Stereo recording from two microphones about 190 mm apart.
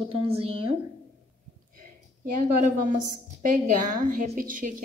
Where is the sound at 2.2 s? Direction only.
45° right (ahead or behind).